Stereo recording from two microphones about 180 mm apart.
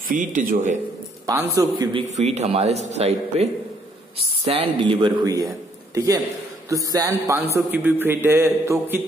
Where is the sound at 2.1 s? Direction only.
40° right (ahead or behind).